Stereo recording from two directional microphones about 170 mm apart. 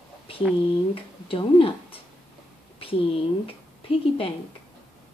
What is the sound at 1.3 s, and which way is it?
A woman's voice, 30° left (ahead or behind).